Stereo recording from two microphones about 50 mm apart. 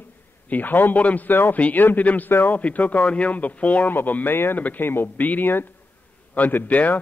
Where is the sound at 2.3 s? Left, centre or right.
Left.